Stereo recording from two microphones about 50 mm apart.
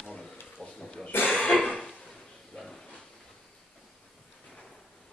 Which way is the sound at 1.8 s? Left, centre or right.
Centre.